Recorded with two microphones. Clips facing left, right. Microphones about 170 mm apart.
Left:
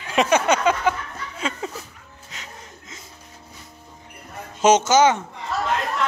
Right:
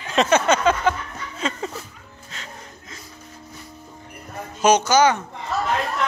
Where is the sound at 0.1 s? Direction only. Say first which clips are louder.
Right 1 dB; 10° left (ahead or behind).